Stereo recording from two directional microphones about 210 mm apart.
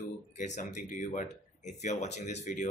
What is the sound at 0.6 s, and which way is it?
Speech, 35° left (ahead or behind).